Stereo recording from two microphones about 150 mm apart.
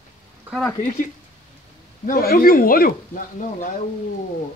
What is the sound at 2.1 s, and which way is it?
Speech, 75° left (ahead or behind).